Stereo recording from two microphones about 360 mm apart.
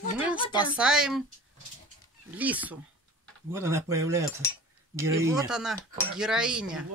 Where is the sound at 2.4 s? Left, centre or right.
Centre.